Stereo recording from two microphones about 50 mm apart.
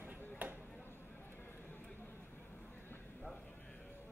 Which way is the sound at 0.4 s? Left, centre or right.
Right.